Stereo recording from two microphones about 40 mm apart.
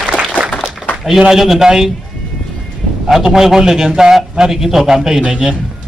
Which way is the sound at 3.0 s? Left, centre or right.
Centre.